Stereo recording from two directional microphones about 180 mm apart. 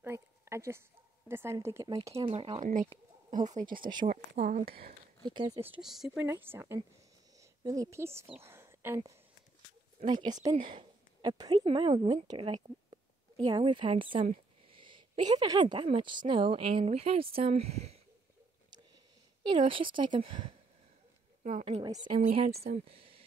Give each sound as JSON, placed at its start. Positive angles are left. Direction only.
{"t": 0.0, "sound": "a sound", "side_deg": -15}
{"t": 1.3, "sound": "speech", "side_deg": -15}
{"t": 2.1, "sound": "speech", "side_deg": -35}
{"t": 3.8, "sound": "speech", "side_deg": -25}
{"t": 4.4, "sound": "speech", "side_deg": -35}
{"t": 5.2, "sound": "speech", "side_deg": -25}
{"t": 5.7, "sound": "speech", "side_deg": 0}
{"t": 10.0, "sound": "speech", "side_deg": -25}
{"t": 10.7, "sound": "a sound", "side_deg": -25}
{"t": 11.6, "sound": "speech", "side_deg": -25}
{"t": 19.5, "sound": "a woman's voice", "side_deg": -30}
{"t": 22.3, "sound": "speech", "side_deg": -35}